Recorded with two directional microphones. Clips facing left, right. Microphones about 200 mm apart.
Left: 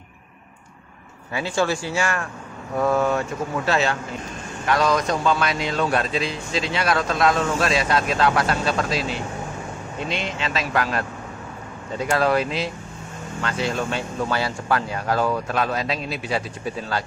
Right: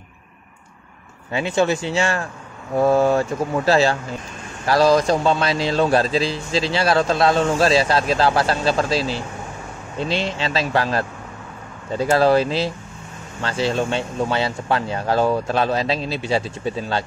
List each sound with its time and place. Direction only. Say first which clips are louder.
1.3 s a man's voice: right 4 dB; 20° right (ahead or behind)